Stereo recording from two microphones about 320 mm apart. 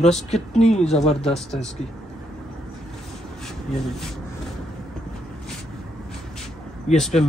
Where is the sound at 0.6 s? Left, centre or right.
Left.